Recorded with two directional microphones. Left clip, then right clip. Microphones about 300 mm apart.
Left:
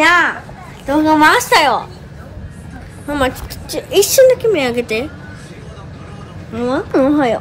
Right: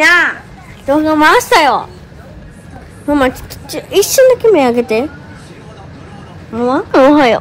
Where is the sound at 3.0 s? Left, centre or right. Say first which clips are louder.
Right 5 dB; centre.